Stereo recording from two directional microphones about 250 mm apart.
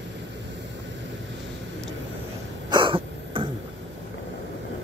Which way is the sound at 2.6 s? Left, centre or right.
Centre.